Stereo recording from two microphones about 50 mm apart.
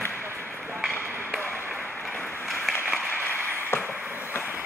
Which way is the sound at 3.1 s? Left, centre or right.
Left.